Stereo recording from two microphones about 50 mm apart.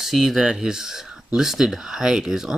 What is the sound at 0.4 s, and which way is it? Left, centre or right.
Speech, centre.